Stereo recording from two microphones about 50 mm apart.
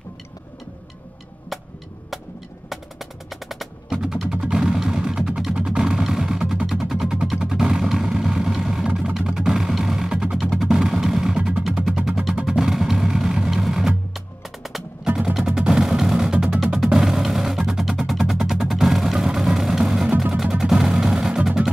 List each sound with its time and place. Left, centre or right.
2.7 s percussion: centre
3.9 s music: centre
10.7 s vehicle: centre
11.3 s music: centre
15.0 s music: centre